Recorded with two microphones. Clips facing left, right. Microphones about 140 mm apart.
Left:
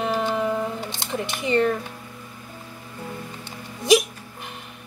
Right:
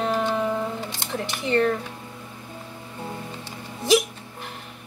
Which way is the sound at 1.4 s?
15° left (ahead or behind).